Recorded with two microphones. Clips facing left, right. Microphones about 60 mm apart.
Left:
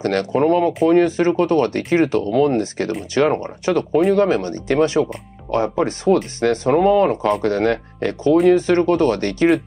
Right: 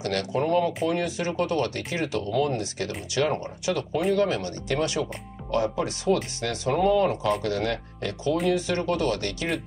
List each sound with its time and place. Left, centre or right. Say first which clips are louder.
0.0 s speech: left 9 dB; left